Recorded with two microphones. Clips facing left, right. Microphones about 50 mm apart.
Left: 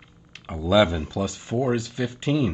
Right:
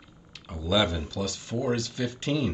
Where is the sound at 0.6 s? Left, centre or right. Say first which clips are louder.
Left 6 dB; left.